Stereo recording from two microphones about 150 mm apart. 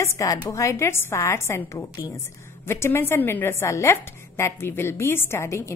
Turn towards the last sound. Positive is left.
turn(degrees=20)  # may be behind; listen again after turning